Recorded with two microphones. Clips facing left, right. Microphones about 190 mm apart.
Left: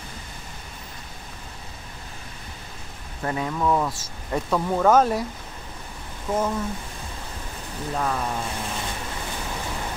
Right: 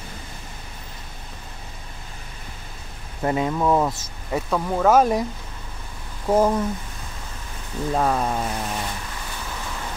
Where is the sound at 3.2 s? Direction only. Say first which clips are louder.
Right 4 dB; 20° right (ahead or behind).